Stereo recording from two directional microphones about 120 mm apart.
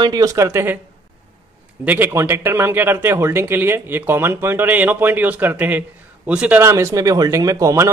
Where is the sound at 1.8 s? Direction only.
15° right (ahead or behind).